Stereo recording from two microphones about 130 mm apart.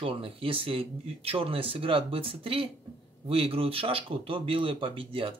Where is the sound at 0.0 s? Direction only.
45° right (ahead or behind).